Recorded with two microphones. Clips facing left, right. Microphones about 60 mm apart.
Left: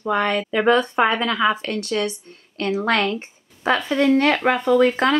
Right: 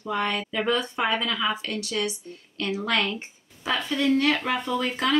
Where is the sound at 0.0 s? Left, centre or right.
Left.